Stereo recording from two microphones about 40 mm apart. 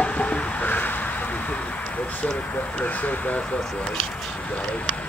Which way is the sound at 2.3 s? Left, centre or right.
Left.